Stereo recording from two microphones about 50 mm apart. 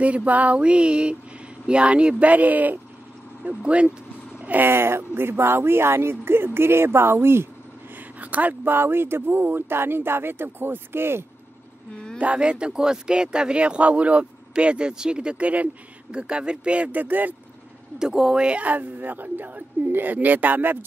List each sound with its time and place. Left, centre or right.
0.0 s speech: right
4.4 s a sound: right
4.6 s speech: right
8.2 s speech: right
8.6 s speech: right
12.2 s speech: right
17.9 s speech: centre; by 20.8 s right